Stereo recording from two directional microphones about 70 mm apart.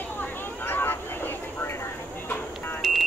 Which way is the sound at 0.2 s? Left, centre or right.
Left.